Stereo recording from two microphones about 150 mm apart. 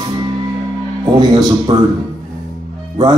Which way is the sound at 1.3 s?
30° right (ahead or behind).